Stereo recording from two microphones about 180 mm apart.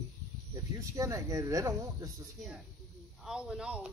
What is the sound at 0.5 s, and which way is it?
Speech, 15° right (ahead or behind).